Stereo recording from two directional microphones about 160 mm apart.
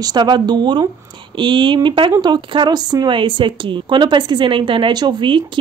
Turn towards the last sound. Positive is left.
turn(degrees=-30)  # may be behind; listen again after turning